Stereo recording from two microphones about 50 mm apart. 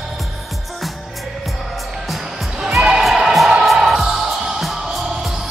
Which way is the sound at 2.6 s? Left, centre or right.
Centre.